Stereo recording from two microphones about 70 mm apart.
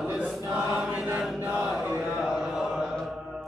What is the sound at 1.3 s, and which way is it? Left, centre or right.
Chant, centre.